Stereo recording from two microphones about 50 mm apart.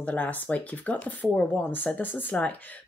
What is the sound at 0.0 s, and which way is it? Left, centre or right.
Speech, left.